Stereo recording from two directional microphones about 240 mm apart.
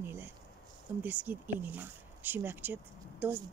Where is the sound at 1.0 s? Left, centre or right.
Centre.